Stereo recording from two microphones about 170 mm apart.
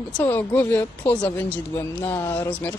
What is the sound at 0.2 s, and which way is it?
A woman's voice, 15° left (ahead or behind).